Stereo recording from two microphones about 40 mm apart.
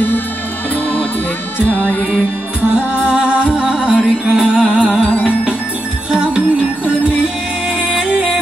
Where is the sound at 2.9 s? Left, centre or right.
Right.